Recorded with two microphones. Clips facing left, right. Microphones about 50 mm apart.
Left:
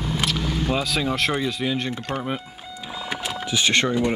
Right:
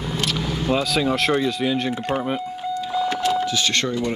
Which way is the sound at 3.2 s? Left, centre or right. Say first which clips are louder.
Right 3 dB; centre.